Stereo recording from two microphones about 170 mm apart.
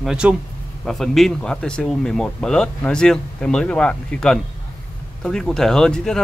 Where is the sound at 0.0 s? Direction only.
5° right (ahead or behind).